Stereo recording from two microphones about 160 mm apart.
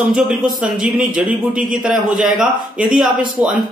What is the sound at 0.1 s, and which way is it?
A man's voice, 5° right (ahead or behind).